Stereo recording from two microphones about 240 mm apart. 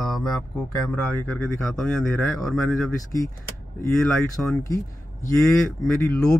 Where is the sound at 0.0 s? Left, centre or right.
Centre.